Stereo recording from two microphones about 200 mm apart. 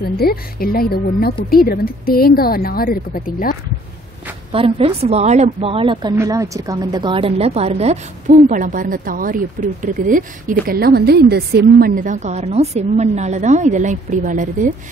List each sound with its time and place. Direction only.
0.2 s a woman's voice: 50° left (ahead or behind)
4.5 s a woman's voice: 30° right (ahead or behind)